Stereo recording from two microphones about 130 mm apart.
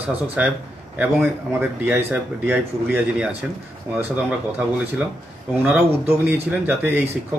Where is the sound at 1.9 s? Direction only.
15° right (ahead or behind).